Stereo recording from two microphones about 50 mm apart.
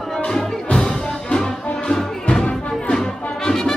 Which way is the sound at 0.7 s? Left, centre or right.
Centre.